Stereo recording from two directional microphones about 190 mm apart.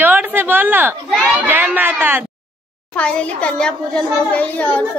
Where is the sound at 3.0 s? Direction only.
5° left (ahead or behind).